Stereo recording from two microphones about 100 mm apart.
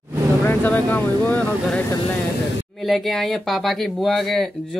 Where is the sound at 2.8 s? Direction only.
Centre (ahead or behind).